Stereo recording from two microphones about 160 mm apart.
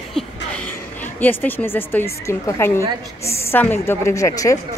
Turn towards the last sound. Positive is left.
turn(degrees=20)  # may be behind; listen again after turning